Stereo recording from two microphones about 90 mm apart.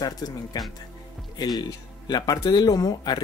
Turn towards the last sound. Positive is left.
turn(degrees=50)  # may be behind; listen again after turning